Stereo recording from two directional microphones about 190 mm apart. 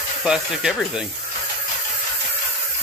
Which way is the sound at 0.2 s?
5° right (ahead or behind).